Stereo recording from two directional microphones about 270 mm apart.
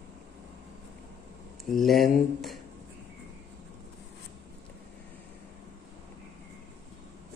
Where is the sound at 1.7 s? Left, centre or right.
Centre.